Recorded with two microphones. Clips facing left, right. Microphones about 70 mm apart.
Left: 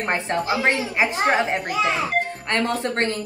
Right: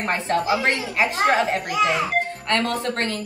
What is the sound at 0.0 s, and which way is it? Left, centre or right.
A woman's voice, left.